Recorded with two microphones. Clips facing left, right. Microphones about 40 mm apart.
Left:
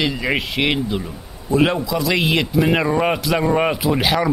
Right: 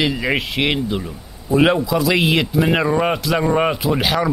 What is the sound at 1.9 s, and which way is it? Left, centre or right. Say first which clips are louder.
A man's voice: right 2 dB; centre.